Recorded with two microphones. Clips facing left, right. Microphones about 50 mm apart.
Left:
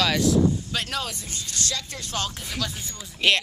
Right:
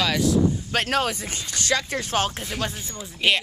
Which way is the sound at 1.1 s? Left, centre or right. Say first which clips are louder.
Right 6 dB; right.